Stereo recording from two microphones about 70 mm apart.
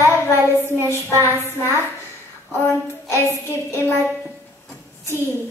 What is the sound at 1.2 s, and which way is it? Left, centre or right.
A woman's voice, left.